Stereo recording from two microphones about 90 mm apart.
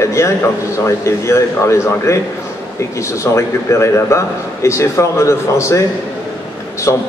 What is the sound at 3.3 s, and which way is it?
A man's voice, 30° left (ahead or behind).